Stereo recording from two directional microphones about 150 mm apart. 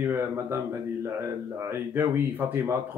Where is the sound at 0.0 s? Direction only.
15° right (ahead or behind).